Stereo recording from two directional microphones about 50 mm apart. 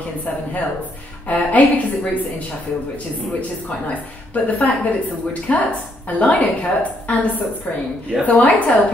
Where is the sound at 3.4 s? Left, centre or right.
Left.